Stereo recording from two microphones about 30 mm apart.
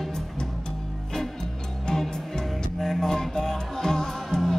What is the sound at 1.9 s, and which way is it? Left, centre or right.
Music, left.